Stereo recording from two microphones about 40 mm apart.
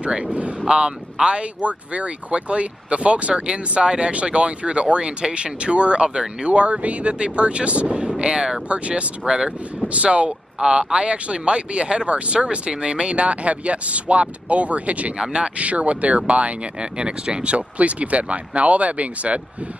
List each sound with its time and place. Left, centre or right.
0.0 s speech: right
8.6 s speech: right
10.6 s speech: centre
15.1 s speech: right
15.5 s speech: right